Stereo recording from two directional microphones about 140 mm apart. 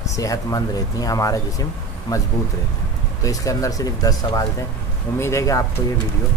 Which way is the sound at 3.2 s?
25° left (ahead or behind).